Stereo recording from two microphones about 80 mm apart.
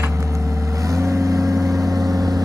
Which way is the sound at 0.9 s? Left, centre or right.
Right.